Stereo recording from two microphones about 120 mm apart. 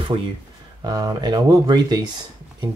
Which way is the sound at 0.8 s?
35° right (ahead or behind).